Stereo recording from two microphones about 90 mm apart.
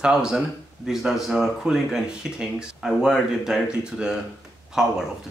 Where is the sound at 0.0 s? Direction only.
10° right (ahead or behind).